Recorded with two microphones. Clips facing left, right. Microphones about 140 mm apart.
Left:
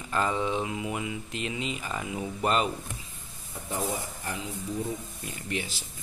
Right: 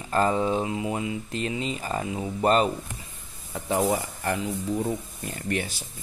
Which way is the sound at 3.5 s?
80° right.